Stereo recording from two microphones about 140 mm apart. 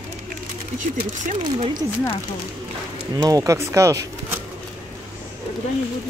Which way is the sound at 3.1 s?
25° right (ahead or behind).